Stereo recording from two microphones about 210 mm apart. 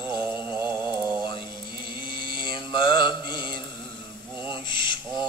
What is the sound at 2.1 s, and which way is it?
Mantra, 20° left (ahead or behind).